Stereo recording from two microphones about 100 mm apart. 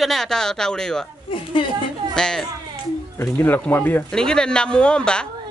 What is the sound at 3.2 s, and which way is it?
Speech, 20° left (ahead or behind).